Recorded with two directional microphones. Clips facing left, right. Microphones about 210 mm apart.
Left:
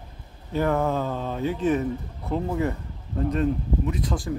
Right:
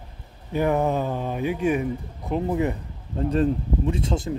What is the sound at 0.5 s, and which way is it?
A man's voice, 15° right (ahead or behind).